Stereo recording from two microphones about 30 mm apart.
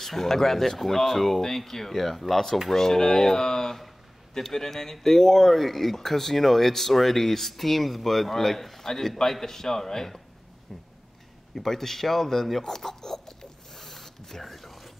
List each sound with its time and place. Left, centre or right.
0.0 s speech: centre
5.5 s speech: centre
10.7 s speech: centre
11.5 s speech: centre
12.7 s a sound: centre